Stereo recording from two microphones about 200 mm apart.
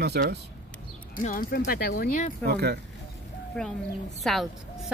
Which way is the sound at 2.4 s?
55° right (ahead or behind).